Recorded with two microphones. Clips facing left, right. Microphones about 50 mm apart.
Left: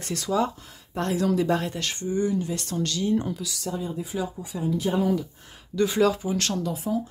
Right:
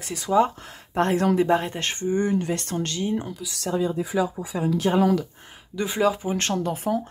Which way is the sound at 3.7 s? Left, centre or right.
Right.